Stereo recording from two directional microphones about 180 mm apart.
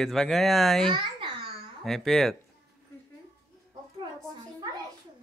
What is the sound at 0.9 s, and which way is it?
Speech, 25° right (ahead or behind).